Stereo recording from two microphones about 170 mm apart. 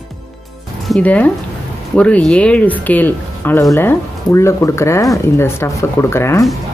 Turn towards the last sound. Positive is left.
turn(degrees=15)  # may be behind; listen again after turning